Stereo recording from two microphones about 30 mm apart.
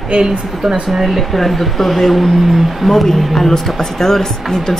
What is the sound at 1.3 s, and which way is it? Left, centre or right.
Speech, centre.